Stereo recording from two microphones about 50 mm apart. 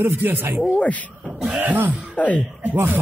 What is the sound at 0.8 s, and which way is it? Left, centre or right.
Speech, left.